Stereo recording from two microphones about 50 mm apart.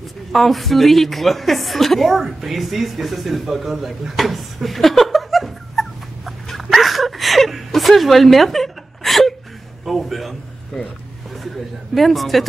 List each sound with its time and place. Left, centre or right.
0.3 s a woman's voice: centre
11.3 s a man's voice: centre